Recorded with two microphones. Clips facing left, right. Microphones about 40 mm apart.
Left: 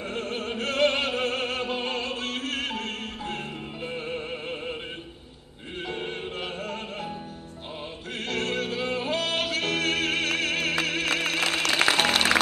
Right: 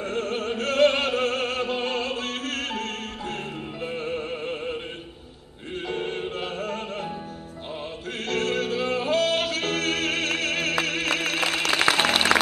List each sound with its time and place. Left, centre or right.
0.1 s opera: centre
3.8 s music: centre
5.9 s music: centre
8.3 s music: centre